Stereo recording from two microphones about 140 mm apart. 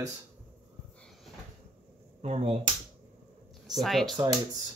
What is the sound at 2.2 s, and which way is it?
Speech, 45° right (ahead or behind).